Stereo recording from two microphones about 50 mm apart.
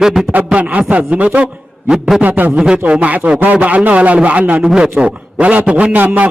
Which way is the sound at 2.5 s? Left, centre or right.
Centre.